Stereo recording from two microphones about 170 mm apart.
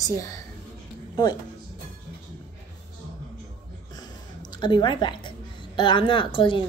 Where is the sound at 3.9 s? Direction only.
25° left (ahead or behind).